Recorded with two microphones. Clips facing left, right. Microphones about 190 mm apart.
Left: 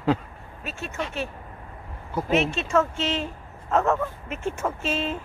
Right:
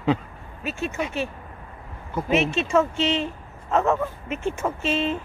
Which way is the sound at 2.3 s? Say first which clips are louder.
Right 2 dB; centre (ahead or behind).